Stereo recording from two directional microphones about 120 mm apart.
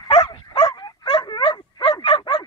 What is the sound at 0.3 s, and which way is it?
Dog, 45° left (ahead or behind).